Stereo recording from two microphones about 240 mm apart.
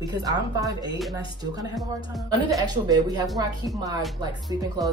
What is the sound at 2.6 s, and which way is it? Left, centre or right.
Speech, centre.